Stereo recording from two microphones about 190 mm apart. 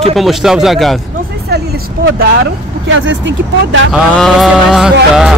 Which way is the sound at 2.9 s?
85° right.